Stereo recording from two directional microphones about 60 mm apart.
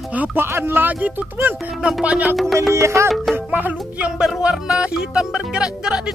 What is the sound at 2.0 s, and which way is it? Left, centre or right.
Music, right.